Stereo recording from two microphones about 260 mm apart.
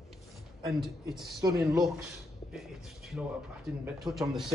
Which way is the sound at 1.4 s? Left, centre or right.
Centre.